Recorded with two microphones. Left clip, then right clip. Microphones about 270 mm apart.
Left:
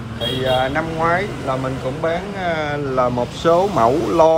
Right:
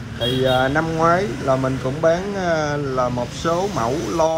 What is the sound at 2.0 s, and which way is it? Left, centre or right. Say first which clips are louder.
Speech: right 4 dB; right.